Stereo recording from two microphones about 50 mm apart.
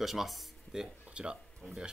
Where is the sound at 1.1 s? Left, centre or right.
Right.